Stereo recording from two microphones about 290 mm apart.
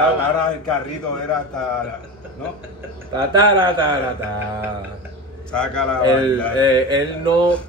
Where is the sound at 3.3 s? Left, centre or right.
Centre.